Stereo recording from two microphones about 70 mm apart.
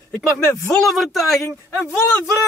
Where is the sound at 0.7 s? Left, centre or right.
Centre.